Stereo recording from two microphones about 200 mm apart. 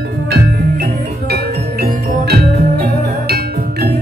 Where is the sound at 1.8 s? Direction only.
55° right (ahead or behind).